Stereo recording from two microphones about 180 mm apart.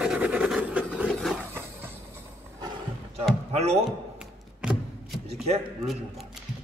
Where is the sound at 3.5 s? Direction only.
35° right (ahead or behind).